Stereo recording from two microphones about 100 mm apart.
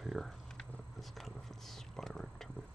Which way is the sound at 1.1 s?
Centre (ahead or behind).